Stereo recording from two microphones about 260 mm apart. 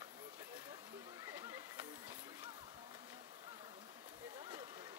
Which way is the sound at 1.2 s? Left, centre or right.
Centre.